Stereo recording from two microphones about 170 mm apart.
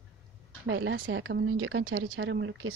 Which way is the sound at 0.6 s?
90° right.